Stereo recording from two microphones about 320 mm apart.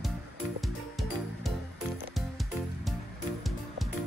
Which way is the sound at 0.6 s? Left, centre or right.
Centre.